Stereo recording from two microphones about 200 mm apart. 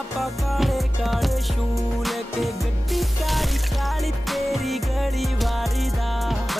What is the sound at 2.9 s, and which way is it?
Music, centre (ahead or behind).